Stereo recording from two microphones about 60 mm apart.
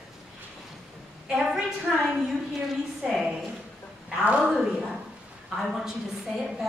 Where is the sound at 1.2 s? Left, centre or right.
Centre.